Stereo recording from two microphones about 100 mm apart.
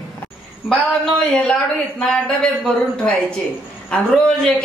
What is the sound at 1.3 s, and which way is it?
A man's voice, 10° left (ahead or behind).